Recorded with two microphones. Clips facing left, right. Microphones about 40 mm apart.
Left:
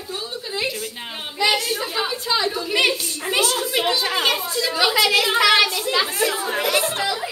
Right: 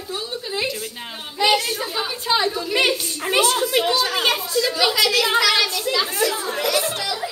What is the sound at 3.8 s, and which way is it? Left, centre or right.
A child's voice, left.